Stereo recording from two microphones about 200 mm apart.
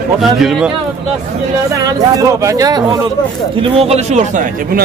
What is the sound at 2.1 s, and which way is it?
Speech, 15° right (ahead or behind).